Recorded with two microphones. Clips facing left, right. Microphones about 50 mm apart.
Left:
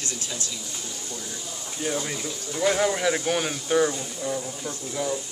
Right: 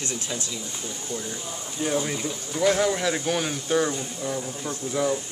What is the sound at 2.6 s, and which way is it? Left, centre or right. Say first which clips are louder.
Speech: right 1 dB; centre.